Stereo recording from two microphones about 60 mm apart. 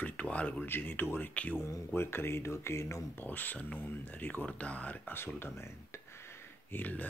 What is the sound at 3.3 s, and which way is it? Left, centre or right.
Speech, left.